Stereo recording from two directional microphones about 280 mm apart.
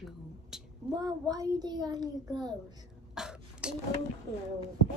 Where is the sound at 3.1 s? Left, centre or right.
Centre.